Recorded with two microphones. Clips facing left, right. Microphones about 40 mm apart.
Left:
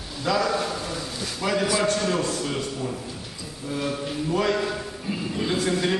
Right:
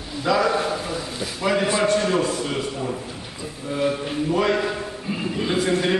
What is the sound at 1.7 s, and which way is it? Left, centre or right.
A man's voice, right.